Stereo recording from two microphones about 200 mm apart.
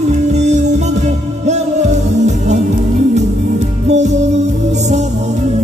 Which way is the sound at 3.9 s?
35° right (ahead or behind).